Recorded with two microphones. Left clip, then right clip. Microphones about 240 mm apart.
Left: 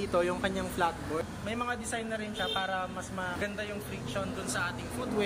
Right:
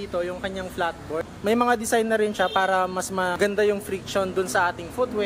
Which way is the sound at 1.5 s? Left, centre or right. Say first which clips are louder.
Right 15 dB; centre.